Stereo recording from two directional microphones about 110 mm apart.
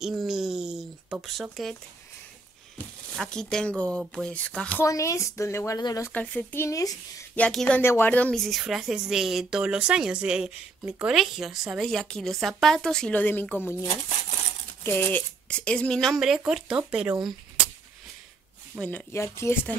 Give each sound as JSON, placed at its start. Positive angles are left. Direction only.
{"t": 0.0, "sound": "a sound", "side_deg": -5}
{"t": 1.2, "sound": "speech", "side_deg": 0}
{"t": 3.2, "sound": "speech", "side_deg": 5}
{"t": 4.8, "sound": "speech", "side_deg": 30}
{"t": 5.8, "sound": "speech", "side_deg": 40}
{"t": 6.1, "sound": "speech", "side_deg": 20}
{"t": 7.3, "sound": "speech", "side_deg": 10}
{"t": 18.8, "sound": "speech", "side_deg": 15}
{"t": 19.1, "sound": "speech", "side_deg": 25}